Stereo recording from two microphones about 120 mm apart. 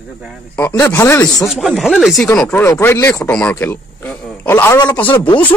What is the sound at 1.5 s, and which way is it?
Speech, 5° right (ahead or behind).